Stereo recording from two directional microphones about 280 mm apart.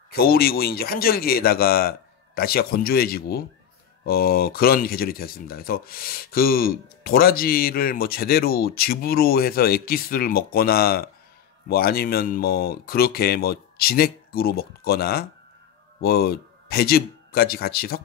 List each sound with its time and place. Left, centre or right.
0.1 s speech: left